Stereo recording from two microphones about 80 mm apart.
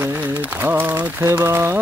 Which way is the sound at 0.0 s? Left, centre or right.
Right.